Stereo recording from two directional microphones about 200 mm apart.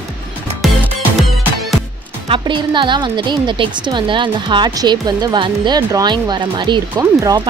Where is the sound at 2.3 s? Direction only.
25° right (ahead or behind).